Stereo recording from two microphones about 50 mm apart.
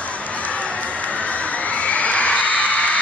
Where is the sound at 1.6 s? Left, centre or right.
Left.